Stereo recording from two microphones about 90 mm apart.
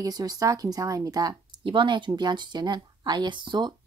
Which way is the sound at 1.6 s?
65° right (ahead or behind).